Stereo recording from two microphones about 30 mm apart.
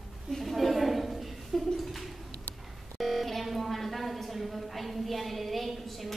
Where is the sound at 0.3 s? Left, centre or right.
Centre.